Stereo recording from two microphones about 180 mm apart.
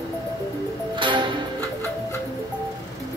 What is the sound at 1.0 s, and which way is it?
Music, 25° right (ahead or behind).